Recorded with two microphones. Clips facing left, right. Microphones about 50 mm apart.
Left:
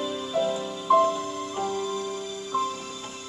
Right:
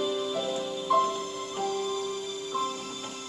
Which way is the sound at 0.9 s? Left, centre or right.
Left.